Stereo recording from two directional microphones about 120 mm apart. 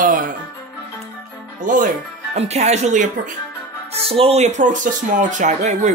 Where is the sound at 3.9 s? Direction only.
55° right (ahead or behind).